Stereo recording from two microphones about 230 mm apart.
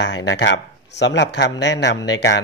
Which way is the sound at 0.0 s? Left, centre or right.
Left.